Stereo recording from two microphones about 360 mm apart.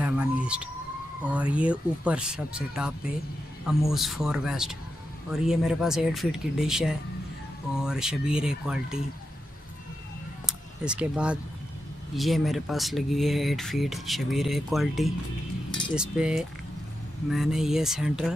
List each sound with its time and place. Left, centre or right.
0.0 s emergency vehicle: centre
1.3 s speech: centre
10.4 s a sound: centre
12.2 s speech: centre